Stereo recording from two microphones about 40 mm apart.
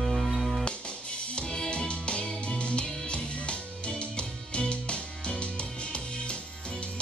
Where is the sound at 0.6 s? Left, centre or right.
Left.